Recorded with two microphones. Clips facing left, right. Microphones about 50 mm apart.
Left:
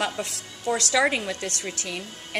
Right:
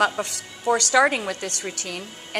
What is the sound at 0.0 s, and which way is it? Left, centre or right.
A woman's voice, right.